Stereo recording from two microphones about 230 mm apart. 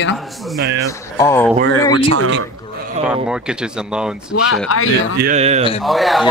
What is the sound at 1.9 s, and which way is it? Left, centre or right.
Speech, right.